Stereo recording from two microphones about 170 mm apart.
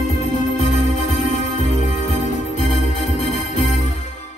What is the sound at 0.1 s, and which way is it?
Music, 45° left (ahead or behind).